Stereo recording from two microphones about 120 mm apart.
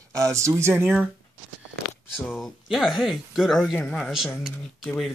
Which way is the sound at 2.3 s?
Centre (ahead or behind).